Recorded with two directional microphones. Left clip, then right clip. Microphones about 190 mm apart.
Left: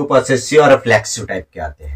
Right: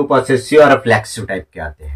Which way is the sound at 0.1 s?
20° right (ahead or behind).